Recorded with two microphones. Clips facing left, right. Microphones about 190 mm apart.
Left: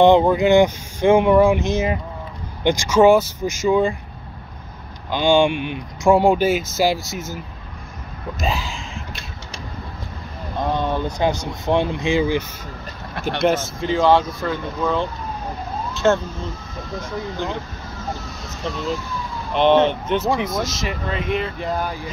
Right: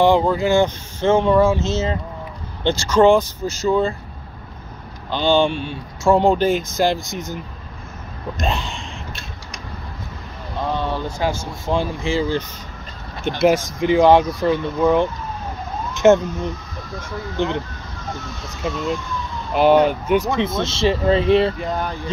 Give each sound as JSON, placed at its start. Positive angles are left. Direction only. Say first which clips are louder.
{"t": 0.0, "sound": "speech", "louder": "left 2 dB", "side_deg": 20}
{"t": 5.1, "sound": "speech", "louder": "left 1 dB", "side_deg": 10}
{"t": 8.4, "sound": "speech", "louder": "even", "side_deg": 0}
{"t": 10.8, "sound": "speech", "louder": "left 2 dB", "side_deg": 20}
{"t": 13.4, "sound": "speech", "louder": "right 3 dB", "side_deg": -10}
{"t": 15.9, "sound": "emergency vehicle", "louder": "right 5 dB", "side_deg": -15}
{"t": 17.4, "sound": "speech", "louder": "right 6 dB", "side_deg": -20}
{"t": 18.1, "sound": "speech", "louder": "right 1 dB", "side_deg": 0}
{"t": 20.3, "sound": "speech", "louder": "right 2 dB", "side_deg": -25}
{"t": 21.5, "sound": "speech", "louder": "even", "side_deg": 5}